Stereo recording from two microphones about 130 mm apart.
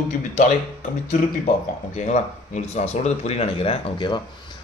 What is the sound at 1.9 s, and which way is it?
Speech, 65° left (ahead or behind).